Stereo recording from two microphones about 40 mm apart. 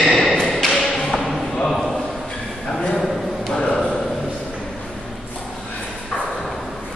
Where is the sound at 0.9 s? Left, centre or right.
Centre.